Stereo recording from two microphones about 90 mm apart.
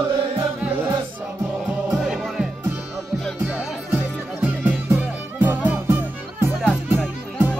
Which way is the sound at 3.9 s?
20° right (ahead or behind).